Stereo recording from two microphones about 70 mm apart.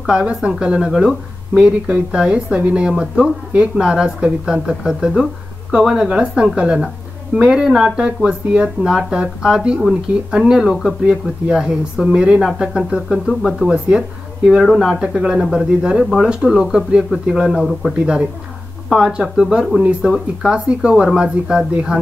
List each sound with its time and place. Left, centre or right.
0.0 s speech: centre
15.0 s speech: centre
17.9 s speech: centre